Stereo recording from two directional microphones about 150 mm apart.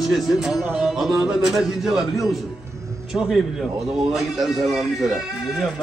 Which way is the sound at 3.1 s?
Centre (ahead or behind).